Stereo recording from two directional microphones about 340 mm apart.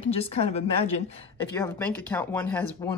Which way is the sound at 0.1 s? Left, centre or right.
Centre.